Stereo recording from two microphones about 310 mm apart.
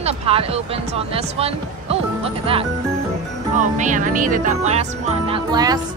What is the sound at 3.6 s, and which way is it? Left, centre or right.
Music, right.